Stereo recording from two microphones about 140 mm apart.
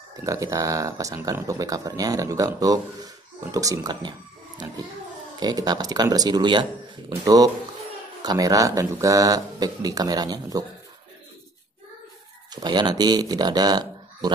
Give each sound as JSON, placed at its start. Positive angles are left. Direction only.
{"t": 0.2, "sound": "speech", "side_deg": -20}
{"t": 5.4, "sound": "speech", "side_deg": -30}
{"t": 12.4, "sound": "speech", "side_deg": -30}